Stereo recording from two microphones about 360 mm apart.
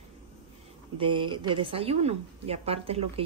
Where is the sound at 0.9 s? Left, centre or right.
Centre.